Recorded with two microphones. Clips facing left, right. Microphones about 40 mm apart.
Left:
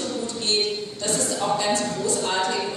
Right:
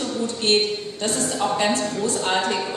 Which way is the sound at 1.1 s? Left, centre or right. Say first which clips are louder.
Right 1 dB; right.